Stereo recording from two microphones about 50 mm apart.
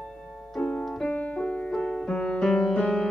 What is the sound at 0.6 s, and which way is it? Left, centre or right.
Music, left.